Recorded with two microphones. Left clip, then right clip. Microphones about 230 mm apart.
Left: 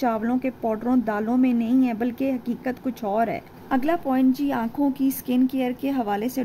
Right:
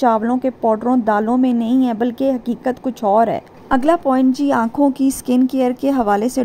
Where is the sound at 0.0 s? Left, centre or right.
Centre.